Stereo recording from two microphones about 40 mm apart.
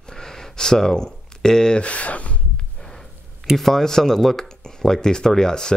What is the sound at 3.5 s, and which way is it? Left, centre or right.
Speech, centre.